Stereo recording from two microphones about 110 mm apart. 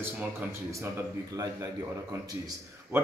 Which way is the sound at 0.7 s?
25° right (ahead or behind).